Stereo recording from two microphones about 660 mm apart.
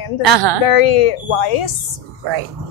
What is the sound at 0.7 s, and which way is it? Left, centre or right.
Speech, left.